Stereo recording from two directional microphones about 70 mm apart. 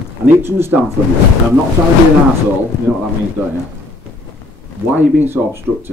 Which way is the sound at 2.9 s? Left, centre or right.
Centre.